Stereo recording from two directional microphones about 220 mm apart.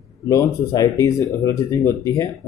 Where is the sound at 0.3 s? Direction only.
15° left (ahead or behind).